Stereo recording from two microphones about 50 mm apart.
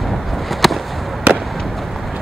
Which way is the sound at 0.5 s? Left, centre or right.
Centre.